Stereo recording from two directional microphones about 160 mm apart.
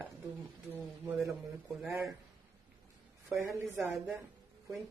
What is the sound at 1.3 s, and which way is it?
Speech, centre (ahead or behind).